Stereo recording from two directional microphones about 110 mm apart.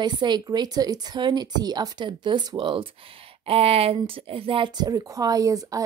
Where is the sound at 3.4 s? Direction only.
65° right (ahead or behind).